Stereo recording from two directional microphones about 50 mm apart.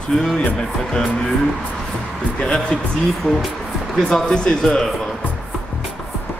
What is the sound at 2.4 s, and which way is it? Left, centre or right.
Speech, centre.